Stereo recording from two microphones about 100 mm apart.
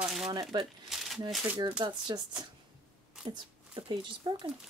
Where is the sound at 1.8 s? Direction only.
50° right (ahead or behind).